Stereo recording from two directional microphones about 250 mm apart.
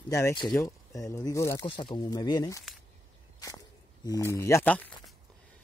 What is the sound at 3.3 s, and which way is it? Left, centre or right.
Walk, centre.